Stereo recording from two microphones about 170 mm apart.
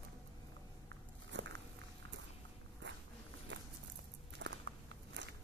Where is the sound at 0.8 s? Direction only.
90° right.